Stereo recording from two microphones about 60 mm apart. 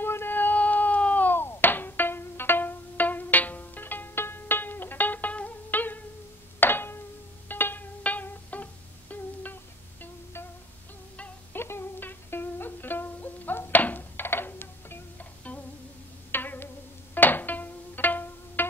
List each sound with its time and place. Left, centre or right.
0.0 s cat: left
6.6 s a sound: left
7.4 s music: left
11.5 s music: left
16.3 s music: left